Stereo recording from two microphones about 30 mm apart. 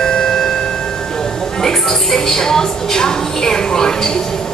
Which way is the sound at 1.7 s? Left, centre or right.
Centre.